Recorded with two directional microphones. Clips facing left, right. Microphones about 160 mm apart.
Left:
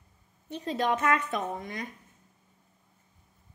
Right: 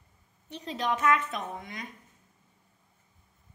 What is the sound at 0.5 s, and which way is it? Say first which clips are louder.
Speech: left 4 dB; 45° left (ahead or behind).